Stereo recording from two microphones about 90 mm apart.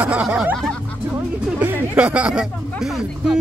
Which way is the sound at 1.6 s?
15° right (ahead or behind).